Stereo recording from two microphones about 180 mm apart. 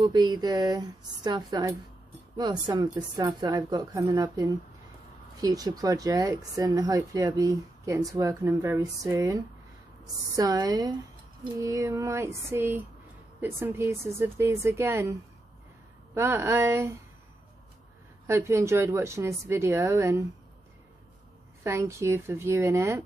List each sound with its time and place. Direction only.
0.0 s a woman's voice: 25° right (ahead or behind)
16.2 s a woman's voice: 15° right (ahead or behind)
18.2 s a woman's voice: 15° right (ahead or behind)
21.6 s a woman's voice: 15° right (ahead or behind)